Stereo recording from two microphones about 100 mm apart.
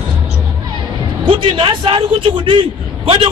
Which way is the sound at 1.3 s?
55° right (ahead or behind).